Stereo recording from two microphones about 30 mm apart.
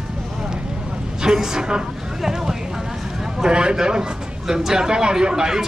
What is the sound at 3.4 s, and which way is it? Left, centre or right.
A man's voice, right.